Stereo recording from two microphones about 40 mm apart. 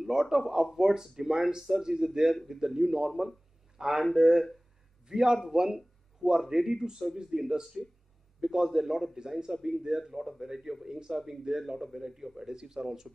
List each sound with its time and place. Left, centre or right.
0.0 s a man's voice: centre